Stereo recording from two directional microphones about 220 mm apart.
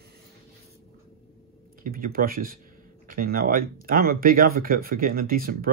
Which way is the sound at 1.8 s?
40° right (ahead or behind).